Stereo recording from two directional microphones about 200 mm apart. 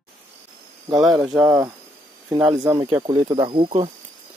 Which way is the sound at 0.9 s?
Centre (ahead or behind).